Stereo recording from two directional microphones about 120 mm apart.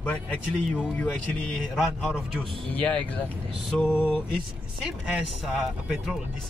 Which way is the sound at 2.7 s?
10° left (ahead or behind).